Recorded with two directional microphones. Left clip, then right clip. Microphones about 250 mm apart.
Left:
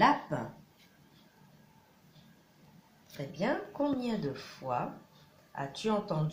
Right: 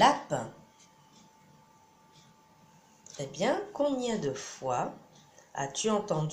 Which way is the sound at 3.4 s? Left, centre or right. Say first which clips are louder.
Right 4 dB; right.